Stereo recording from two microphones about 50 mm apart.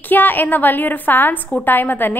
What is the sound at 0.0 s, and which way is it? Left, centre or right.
A woman's voice, left.